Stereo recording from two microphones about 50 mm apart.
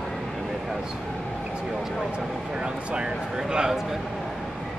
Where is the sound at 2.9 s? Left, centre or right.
Centre.